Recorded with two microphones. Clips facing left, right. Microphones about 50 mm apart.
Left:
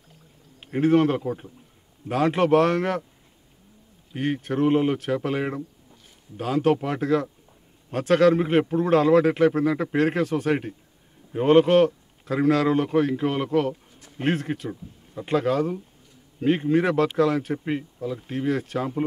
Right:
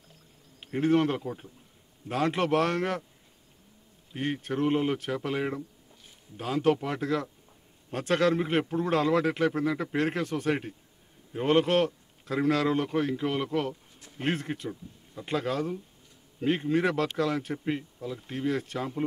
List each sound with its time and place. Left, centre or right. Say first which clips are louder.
0.6 s speech: left 5 dB; centre
1.2 s speech: left 7 dB; left
2.0 s speech: left 6 dB; centre
4.1 s speech: left 5 dB; centre
9.9 s speech: left 6 dB; centre